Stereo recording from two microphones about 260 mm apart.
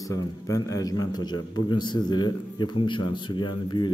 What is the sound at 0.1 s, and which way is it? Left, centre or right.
A man's voice, centre.